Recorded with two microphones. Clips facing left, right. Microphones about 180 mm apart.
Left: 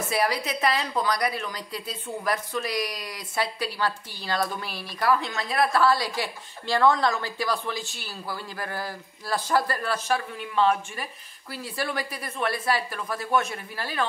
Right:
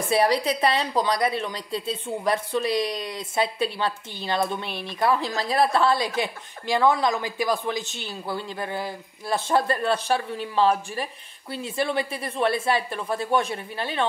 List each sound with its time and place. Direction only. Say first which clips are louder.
0.1 s a woman's voice: right 6 dB; 30° right (ahead or behind)